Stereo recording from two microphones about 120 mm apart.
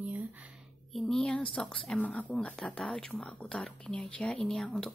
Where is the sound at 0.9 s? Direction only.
5° left (ahead or behind).